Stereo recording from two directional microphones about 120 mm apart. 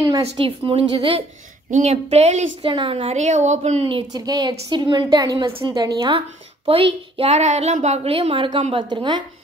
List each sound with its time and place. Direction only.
0.0 s a sound: 30° right (ahead or behind)
0.4 s a woman's voice: 45° right (ahead or behind)
1.7 s a woman's voice: 65° right (ahead or behind)
2.7 s a woman's voice: 45° right (ahead or behind)
3.2 s a woman's voice: 75° right (ahead or behind)
4.1 s a woman's voice: 35° right (ahead or behind)
6.7 s a woman's voice: 50° right (ahead or behind)